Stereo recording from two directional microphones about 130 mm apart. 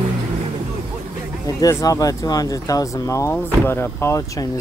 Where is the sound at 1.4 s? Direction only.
25° left (ahead or behind).